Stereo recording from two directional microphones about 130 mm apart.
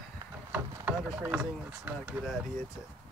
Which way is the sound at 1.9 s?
15° right (ahead or behind).